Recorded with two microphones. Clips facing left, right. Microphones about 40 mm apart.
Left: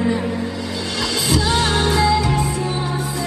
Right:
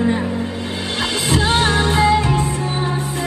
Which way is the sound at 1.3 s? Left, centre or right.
Right.